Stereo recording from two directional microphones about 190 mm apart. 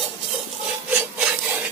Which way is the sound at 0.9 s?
10° right (ahead or behind).